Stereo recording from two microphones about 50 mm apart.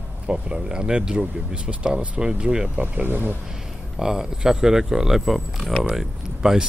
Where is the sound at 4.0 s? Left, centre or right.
Centre.